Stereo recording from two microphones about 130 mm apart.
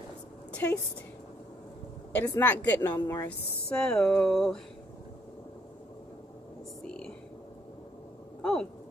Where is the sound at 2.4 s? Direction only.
10° left (ahead or behind).